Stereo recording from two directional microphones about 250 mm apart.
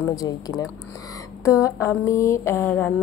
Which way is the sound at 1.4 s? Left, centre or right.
Centre.